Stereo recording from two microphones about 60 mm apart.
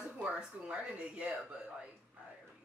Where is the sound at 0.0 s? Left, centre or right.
Centre.